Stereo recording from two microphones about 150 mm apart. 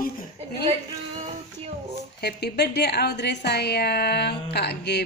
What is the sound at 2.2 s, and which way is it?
A woman's voice, 90° left.